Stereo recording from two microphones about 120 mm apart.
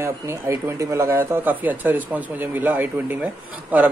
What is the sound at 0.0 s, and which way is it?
Speech, 20° right (ahead or behind).